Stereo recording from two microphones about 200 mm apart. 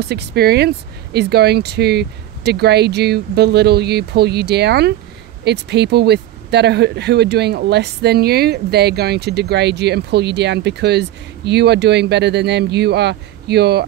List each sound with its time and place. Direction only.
0.0 s speech: 55° right (ahead or behind)